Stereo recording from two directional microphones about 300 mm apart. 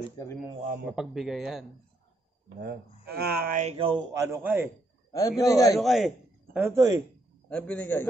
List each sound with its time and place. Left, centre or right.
0.8 s speech: centre
2.6 s speech: right; by 4.6 s centre
5.4 s a man's voice: centre
5.8 s speech: centre
7.4 s speech: centre